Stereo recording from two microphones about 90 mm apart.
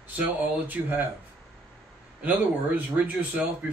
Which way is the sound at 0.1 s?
20° right (ahead or behind).